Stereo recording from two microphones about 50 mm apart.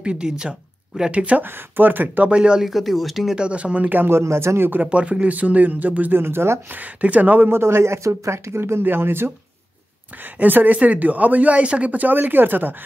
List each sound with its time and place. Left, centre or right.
0.0 s speech: centre
1.1 s speech: right
1.4 s speech: right
2.2 s speech: centre
2.6 s speech: centre
3.3 s speech: right
4.1 s speech: right
4.8 s speech: right
6.1 s speech: right
6.7 s speech: right
7.6 s speech: right
10.2 s speech: right